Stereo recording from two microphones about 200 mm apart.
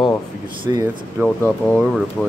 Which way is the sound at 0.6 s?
20° right (ahead or behind).